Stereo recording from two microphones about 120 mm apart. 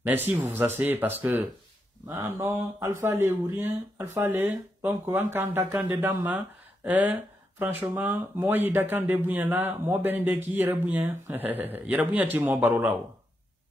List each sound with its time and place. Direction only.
0.0 s speech: 15° right (ahead or behind)